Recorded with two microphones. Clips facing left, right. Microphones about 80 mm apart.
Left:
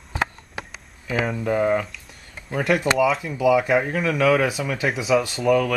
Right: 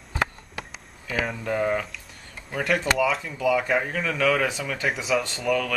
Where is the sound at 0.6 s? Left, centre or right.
Left.